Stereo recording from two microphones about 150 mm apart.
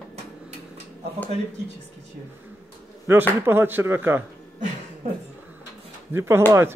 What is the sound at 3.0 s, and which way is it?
Speech, 15° right (ahead or behind).